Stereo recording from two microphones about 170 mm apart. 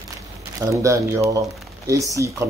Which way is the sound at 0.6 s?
20° right (ahead or behind).